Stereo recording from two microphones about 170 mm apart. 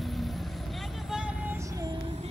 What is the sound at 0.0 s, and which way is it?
Vehicle, centre (ahead or behind).